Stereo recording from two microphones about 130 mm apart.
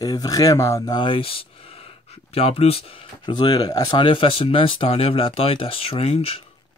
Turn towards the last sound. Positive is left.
turn(degrees=50)  # may be behind; listen again after turning